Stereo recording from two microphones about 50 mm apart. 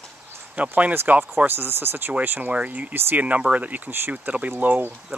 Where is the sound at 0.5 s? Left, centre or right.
Right.